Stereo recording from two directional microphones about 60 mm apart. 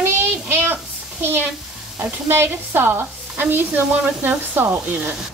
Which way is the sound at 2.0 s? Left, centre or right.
Right.